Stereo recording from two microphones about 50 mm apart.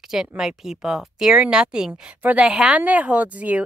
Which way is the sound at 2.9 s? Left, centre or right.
Right.